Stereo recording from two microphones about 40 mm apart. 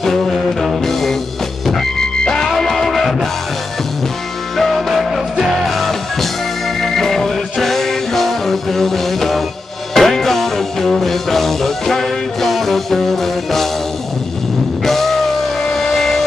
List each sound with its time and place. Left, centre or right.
0.3 s music: centre
0.8 s music: centre
2.0 s music: centre
2.5 s music: centre
4.6 s music: centre
14.9 s music: centre